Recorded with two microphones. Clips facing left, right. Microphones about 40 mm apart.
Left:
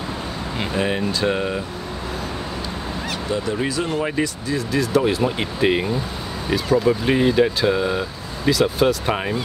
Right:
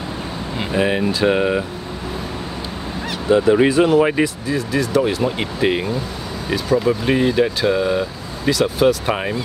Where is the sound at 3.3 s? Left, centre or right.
Right.